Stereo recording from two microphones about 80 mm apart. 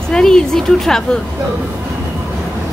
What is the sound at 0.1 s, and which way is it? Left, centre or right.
Speech, centre.